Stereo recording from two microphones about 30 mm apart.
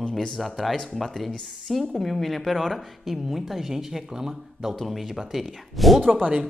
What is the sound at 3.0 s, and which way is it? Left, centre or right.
Speech, centre.